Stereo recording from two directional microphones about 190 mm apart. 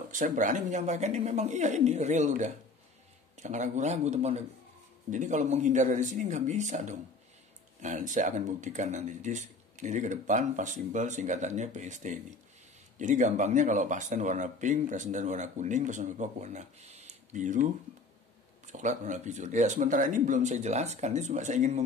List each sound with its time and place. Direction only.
0.1 s speech: 45° right (ahead or behind)
18.7 s speech: 40° right (ahead or behind)